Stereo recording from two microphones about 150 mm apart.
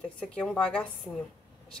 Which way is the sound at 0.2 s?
Centre (ahead or behind).